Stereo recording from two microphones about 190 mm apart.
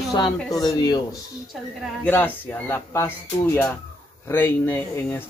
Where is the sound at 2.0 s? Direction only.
10° left (ahead or behind).